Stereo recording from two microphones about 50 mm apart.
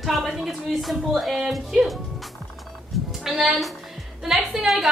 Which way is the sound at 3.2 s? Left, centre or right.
Centre.